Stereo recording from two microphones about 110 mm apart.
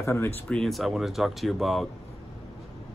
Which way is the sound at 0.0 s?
25° left (ahead or behind).